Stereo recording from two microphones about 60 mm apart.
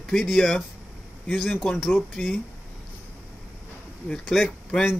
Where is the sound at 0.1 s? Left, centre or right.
Centre.